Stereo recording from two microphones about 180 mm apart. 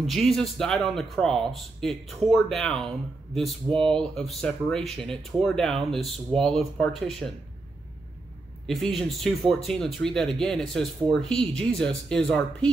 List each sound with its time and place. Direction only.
0.0 s speech: centre (ahead or behind)
8.6 s speech: centre (ahead or behind)